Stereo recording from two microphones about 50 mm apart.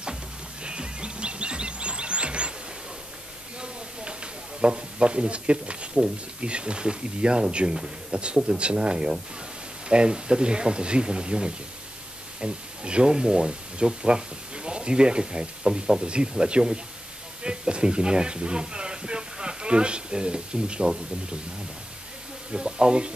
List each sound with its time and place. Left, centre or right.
0.7 s music: centre
3.6 s a sound: centre
6.4 s speech: right
22.5 s speech: centre